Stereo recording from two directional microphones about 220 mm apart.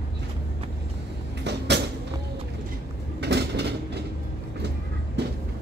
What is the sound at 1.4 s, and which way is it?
Cupboard open or close, 50° right (ahead or behind).